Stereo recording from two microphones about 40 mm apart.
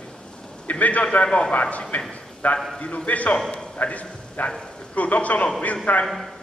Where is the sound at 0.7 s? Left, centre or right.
Left.